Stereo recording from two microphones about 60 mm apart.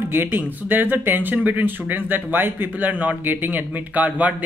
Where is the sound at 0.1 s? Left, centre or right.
Right.